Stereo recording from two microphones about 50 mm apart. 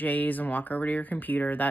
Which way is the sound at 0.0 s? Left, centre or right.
Left.